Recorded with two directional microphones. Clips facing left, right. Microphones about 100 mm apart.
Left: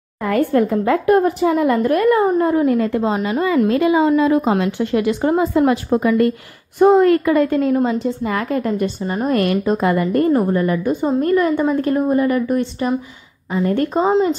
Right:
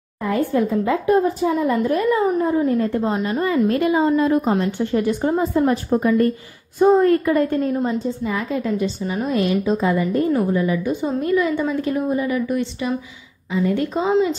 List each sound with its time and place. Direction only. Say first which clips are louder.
0.2 s a woman's voice: left 3 dB; 65° left (ahead or behind); by 6.3 s 90° left
6.8 s a woman's voice: left 3 dB; 75° left (ahead or behind); by 14.3 s 40° left (ahead or behind)